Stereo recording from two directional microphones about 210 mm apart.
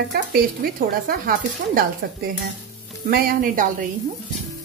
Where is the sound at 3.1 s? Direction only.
45° right (ahead or behind).